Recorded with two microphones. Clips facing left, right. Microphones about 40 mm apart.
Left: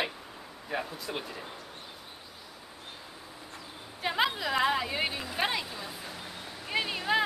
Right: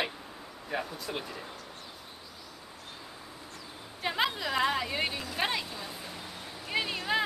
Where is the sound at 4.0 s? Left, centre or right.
Centre.